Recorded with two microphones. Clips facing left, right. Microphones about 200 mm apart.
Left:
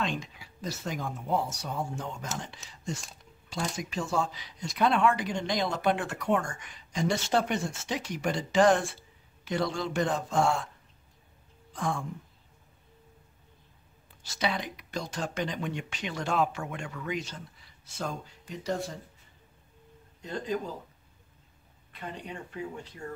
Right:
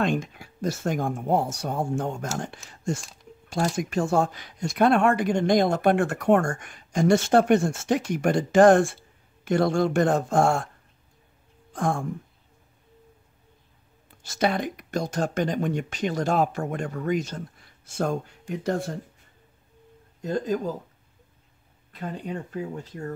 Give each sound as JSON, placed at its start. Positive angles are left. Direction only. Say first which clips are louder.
{"t": 0.0, "sound": "speech", "louder": "right 8 dB", "side_deg": -50}
{"t": 11.7, "sound": "a sound", "louder": "right 6 dB", "side_deg": -50}
{"t": 14.2, "sound": "speech", "louder": "right 7 dB", "side_deg": -50}
{"t": 20.2, "sound": "speech", "louder": "right 6 dB", "side_deg": -45}
{"t": 21.9, "sound": "speech", "louder": "right 7 dB", "side_deg": -40}